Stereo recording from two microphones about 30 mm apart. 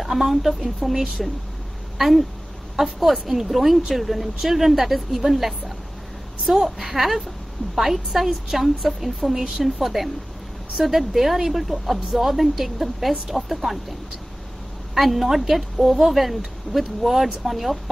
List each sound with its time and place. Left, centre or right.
0.0 s a woman's voice: centre
2.0 s a woman's voice: centre
15.0 s a woman's voice: centre